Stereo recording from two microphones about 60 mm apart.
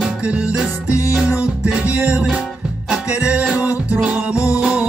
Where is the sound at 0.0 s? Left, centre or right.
Centre.